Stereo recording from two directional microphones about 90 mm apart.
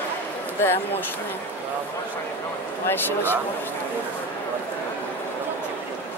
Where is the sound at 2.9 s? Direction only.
20° left (ahead or behind).